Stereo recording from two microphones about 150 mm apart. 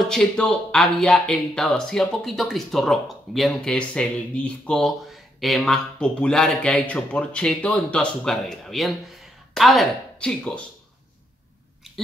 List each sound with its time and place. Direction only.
0.0 s speech: 5° left (ahead or behind)